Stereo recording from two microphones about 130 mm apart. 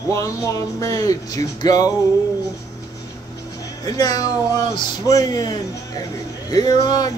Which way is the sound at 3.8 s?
30° left (ahead or behind).